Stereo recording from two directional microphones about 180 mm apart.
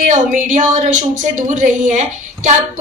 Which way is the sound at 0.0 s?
45° right (ahead or behind).